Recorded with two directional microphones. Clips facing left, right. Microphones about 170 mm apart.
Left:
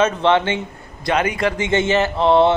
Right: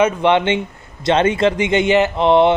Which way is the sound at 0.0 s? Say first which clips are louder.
Right 2 dB; 15° right (ahead or behind).